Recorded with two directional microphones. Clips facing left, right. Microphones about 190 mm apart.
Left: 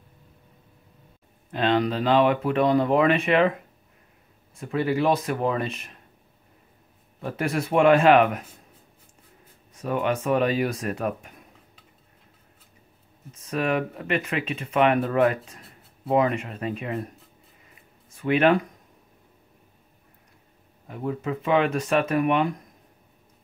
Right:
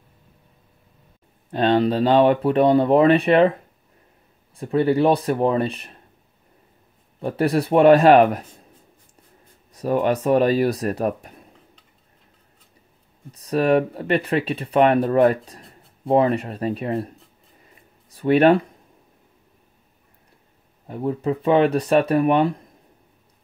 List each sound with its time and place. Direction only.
1.5 s speech: 35° right (ahead or behind)
4.6 s speech: 35° right (ahead or behind)
7.2 s speech: 35° right (ahead or behind)
9.8 s speech: 40° right (ahead or behind)
13.3 s speech: 35° right (ahead or behind)
18.1 s speech: 35° right (ahead or behind)
20.8 s speech: 30° right (ahead or behind)